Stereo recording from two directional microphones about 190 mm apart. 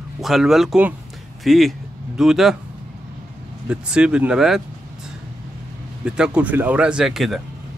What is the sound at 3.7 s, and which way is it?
Speech, 5° right (ahead or behind).